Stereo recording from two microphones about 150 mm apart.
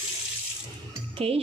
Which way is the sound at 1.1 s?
40° right (ahead or behind).